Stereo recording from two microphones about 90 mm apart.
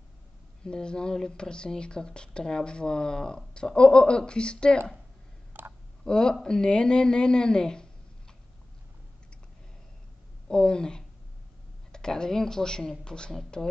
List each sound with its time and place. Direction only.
0.7 s speech: 10° left (ahead or behind)
5.5 s a sound: 20° right (ahead or behind)
6.0 s speech: 10° left (ahead or behind)
10.5 s speech: 10° left (ahead or behind)